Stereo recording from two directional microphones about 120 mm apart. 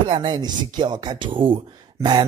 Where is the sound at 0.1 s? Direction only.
40° right (ahead or behind).